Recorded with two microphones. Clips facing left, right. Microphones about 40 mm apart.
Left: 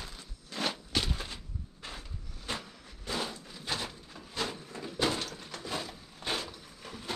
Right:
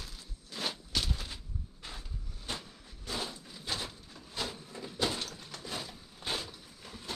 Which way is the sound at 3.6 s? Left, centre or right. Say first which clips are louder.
Left 2 dB; centre.